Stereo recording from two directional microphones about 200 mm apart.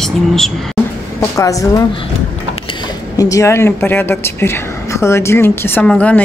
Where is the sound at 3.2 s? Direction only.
15° left (ahead or behind).